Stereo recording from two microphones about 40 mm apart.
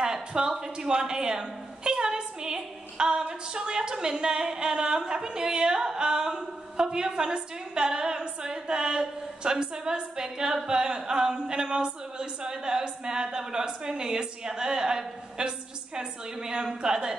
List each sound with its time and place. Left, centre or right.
0.0 s a woman's voice: centre